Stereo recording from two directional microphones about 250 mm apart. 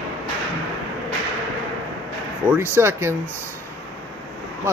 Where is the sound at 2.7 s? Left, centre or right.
Centre.